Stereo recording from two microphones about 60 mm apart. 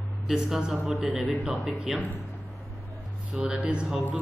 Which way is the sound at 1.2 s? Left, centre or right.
Right.